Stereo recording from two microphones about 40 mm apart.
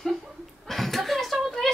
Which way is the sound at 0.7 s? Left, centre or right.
Centre.